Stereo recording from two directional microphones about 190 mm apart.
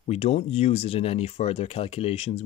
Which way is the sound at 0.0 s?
35° left (ahead or behind).